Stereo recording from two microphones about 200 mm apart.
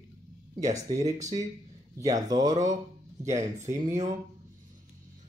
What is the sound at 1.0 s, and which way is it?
Speech, 35° right (ahead or behind).